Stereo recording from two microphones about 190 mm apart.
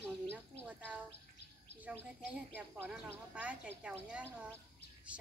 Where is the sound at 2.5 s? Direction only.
10° right (ahead or behind).